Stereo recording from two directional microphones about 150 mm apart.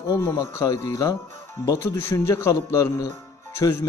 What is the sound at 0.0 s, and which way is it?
A man's voice, 20° left (ahead or behind).